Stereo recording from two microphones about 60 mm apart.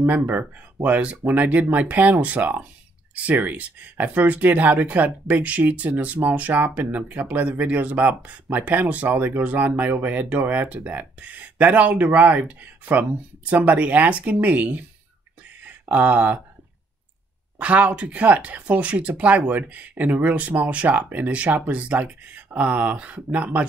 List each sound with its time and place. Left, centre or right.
0.1 s speech: right
15.9 s speech: right
17.6 s speech: right